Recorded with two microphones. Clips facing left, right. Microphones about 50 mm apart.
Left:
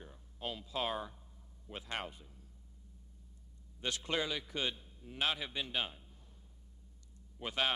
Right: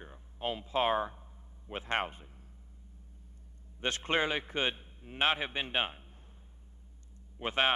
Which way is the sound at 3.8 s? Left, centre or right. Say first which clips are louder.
Right 6 dB; right.